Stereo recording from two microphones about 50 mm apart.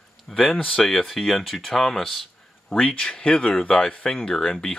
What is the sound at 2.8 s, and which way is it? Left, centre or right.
Speech, left.